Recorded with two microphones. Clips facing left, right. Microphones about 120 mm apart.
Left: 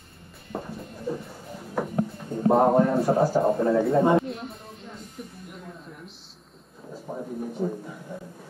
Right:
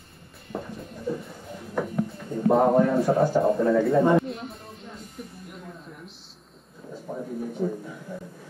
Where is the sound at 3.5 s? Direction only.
25° left (ahead or behind).